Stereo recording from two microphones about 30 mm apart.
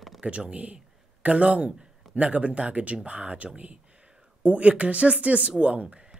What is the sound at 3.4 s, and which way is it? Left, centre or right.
Speech, right.